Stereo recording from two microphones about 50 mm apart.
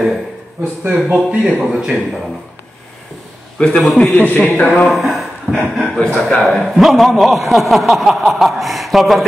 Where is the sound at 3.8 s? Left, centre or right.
Centre.